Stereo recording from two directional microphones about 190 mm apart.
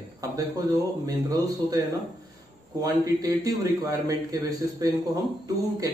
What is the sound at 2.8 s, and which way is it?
A man's voice, 20° right (ahead or behind).